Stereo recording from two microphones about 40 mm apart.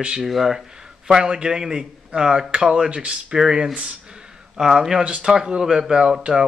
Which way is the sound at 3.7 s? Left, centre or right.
Right.